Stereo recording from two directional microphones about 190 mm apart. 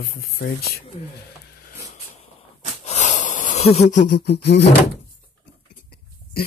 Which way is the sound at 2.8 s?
35° left (ahead or behind).